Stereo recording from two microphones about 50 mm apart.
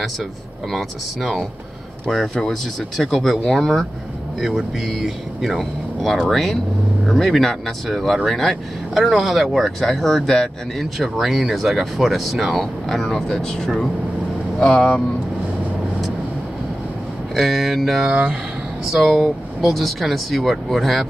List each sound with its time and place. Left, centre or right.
0.7 s speech: centre
17.4 s speech: centre
18.0 s speech: right
19.0 s speech: centre